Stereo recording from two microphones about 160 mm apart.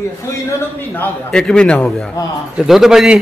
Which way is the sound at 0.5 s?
15° left (ahead or behind).